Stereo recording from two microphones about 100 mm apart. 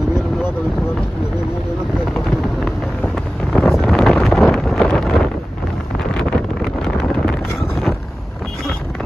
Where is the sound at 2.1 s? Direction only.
5° left (ahead or behind).